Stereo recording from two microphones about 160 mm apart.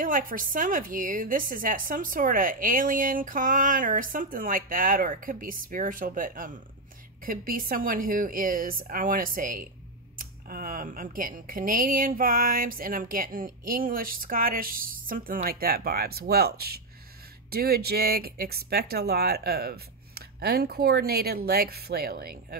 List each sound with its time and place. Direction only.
0.0 s speech: 60° right (ahead or behind)